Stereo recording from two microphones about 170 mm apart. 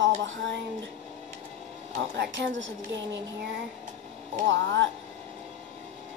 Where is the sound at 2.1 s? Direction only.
90° right.